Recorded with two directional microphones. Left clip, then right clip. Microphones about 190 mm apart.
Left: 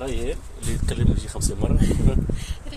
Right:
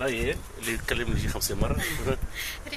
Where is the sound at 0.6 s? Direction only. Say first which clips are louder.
Right 1 dB; 5° right (ahead or behind).